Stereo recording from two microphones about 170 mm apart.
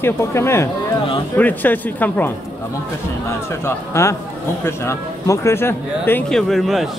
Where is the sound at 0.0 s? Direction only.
15° left (ahead or behind).